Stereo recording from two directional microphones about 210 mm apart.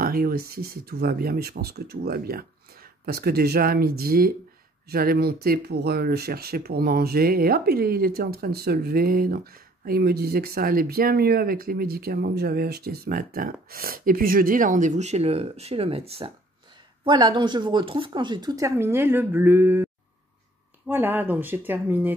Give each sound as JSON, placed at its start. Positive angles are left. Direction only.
{"t": 0.0, "sound": "speech", "side_deg": -45}